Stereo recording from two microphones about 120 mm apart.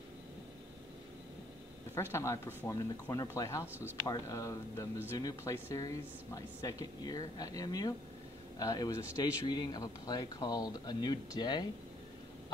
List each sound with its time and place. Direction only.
2.1 s speech: 25° left (ahead or behind)
3.6 s speech: 15° right (ahead or behind)
4.1 s speech: 25° left (ahead or behind)